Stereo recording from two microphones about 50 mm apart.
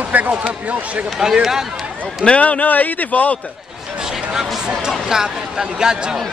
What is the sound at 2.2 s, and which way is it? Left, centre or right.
Speech, left.